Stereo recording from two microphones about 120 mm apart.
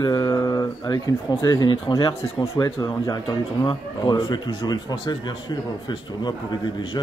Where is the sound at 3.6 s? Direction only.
40° left (ahead or behind).